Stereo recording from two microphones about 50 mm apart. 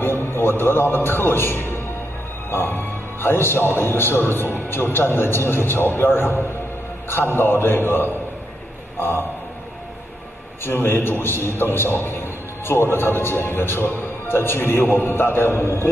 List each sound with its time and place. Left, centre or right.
0.0 s a man's voice: left
10.6 s a man's voice: left